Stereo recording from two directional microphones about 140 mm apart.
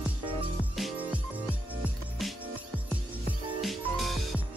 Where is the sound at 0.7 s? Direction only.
5° right (ahead or behind).